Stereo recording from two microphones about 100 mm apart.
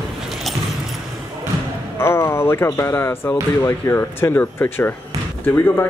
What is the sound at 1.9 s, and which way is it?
Speech, 25° left (ahead or behind).